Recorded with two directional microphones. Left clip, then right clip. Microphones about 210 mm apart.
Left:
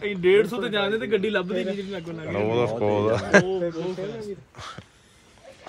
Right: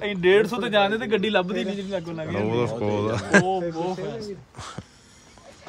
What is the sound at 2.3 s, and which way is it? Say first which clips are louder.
Speech: left 2 dB; 15° right (ahead or behind).